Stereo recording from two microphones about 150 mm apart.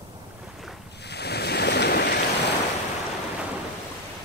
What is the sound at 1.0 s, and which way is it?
Waves, 90° left.